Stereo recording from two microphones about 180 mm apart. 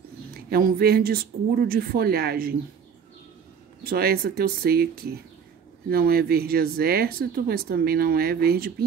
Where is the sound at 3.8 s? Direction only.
55° right (ahead or behind).